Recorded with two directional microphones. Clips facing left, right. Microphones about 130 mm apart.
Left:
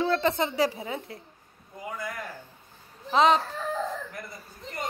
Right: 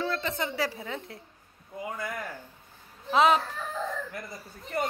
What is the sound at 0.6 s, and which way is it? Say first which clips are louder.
Speech: left 5 dB; 15° left (ahead or behind).